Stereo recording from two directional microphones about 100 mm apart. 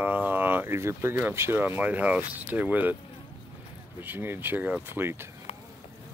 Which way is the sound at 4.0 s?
20° right (ahead or behind).